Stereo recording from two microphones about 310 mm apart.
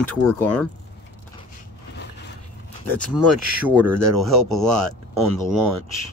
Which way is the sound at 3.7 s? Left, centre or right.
Centre.